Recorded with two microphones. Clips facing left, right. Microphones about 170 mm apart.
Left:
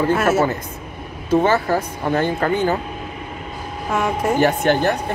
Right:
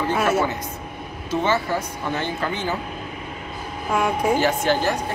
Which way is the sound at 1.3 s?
45° left (ahead or behind).